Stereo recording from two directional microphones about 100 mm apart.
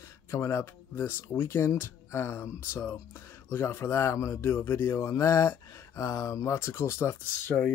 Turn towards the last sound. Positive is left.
turn(degrees=25)  # may be behind; listen again after turning